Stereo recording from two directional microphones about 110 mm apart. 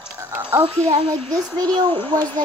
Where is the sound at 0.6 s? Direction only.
50° right (ahead or behind).